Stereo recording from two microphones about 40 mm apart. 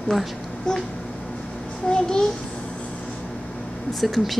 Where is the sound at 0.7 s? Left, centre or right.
Centre.